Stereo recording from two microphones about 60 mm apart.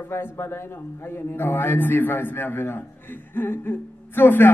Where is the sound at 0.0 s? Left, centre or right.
Left.